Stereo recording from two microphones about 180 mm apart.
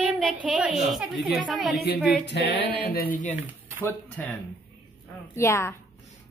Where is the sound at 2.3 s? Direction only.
65° left (ahead or behind).